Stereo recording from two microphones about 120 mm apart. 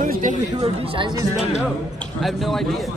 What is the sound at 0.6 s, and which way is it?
Speech, 50° right (ahead or behind).